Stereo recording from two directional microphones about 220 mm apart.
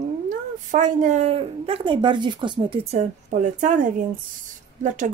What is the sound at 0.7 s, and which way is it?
Speech, 35° right (ahead or behind).